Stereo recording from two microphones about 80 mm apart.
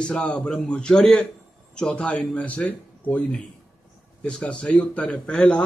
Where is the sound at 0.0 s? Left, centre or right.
Centre.